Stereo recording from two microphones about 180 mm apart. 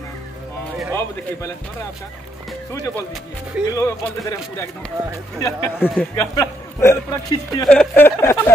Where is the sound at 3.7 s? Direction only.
15° left (ahead or behind).